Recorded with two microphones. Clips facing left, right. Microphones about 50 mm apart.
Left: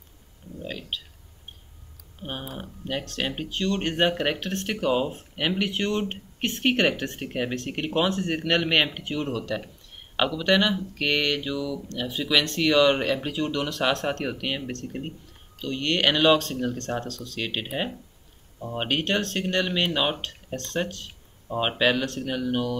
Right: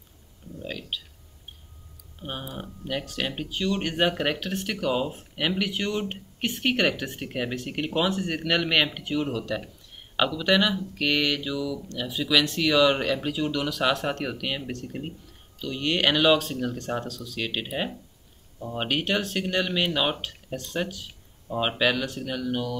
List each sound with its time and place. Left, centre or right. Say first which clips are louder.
2.2 s speech: left 1 dB; left
2.5 s speech: even; centre
4.6 s speech: left 2 dB; centre
5.1 s speech: even; centre
16.7 s speech: even; centre
17.4 s speech: even; centre